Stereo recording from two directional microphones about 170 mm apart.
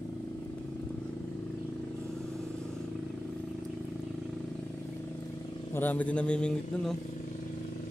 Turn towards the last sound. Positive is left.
turn(degrees=5)  # may be behind; listen again after turning